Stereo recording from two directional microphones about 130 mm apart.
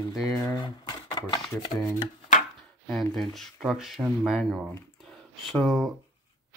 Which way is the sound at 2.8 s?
Centre (ahead or behind).